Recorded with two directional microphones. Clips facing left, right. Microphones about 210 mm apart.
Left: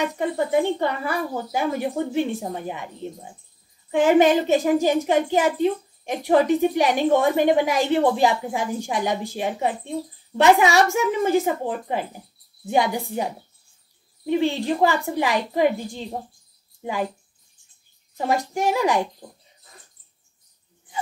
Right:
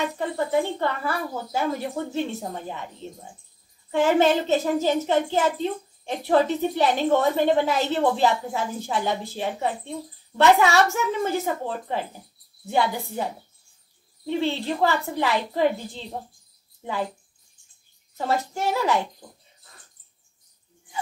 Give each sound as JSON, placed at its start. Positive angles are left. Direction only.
{"t": 0.0, "sound": "a woman's voice", "side_deg": 15}
{"t": 18.1, "sound": "a woman's voice", "side_deg": 15}